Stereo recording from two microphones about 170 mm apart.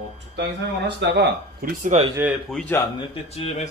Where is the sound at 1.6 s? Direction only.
60° right (ahead or behind).